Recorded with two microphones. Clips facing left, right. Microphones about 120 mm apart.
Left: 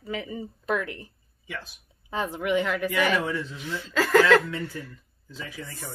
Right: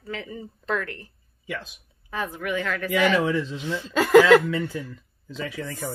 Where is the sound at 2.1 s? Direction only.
25° left (ahead or behind).